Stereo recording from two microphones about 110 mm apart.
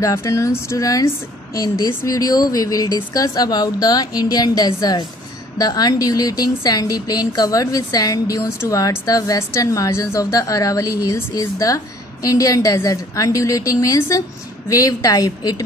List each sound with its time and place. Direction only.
0.0 s a woman's voice: 30° left (ahead or behind)